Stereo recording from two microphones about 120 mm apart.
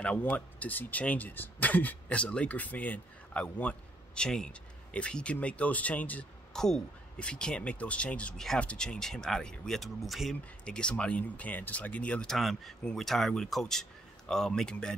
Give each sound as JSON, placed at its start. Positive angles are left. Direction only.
{"t": 0.0, "sound": "speech", "side_deg": 10}